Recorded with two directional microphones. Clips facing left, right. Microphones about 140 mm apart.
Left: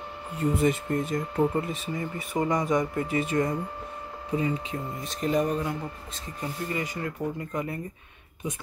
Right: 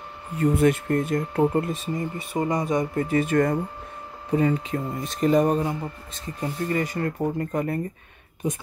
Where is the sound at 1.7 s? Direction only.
35° right (ahead or behind); by 7.3 s 55° right (ahead or behind).